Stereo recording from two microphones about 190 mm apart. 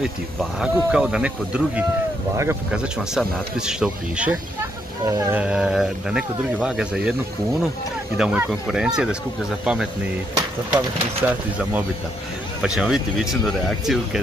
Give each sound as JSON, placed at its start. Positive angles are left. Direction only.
{"t": 0.0, "sound": "speech", "side_deg": -5}
{"t": 5.0, "sound": "speech", "side_deg": -15}
{"t": 8.2, "sound": "speech", "side_deg": -5}
{"t": 10.3, "sound": "speech", "side_deg": -10}